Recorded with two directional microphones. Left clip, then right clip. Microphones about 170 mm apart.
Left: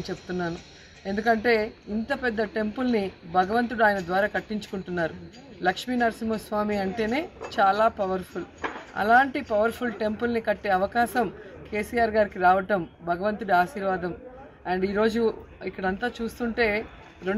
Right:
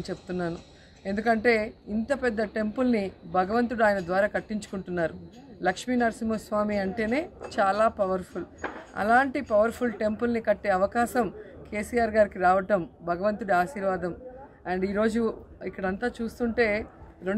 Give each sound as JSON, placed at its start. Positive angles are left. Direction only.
{"t": 0.0, "sound": "a woman's voice", "side_deg": -25}